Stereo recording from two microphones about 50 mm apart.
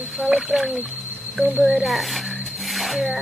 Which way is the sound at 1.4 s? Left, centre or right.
Right.